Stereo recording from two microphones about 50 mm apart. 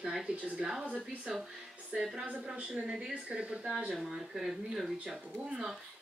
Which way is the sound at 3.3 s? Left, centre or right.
Centre.